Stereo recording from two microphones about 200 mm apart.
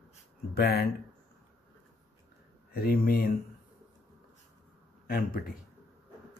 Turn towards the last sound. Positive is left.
turn(degrees=45)  # may be behind; listen again after turning